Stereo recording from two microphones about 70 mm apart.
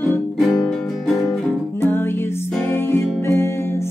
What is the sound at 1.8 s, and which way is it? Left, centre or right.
Music, left.